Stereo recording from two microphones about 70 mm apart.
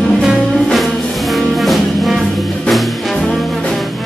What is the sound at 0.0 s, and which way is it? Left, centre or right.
Music, centre.